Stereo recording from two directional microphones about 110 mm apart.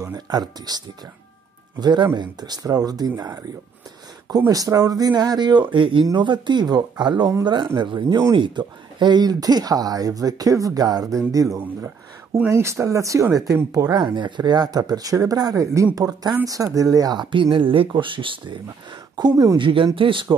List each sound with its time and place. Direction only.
0.0 s speech: 35° right (ahead or behind)
4.5 s speech: 35° right (ahead or behind)
19.6 s speech: 50° right (ahead or behind)